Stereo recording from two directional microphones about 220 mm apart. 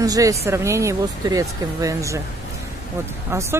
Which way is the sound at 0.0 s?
15° right (ahead or behind).